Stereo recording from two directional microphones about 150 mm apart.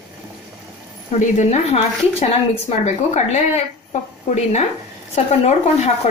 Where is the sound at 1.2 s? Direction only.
50° left (ahead or behind).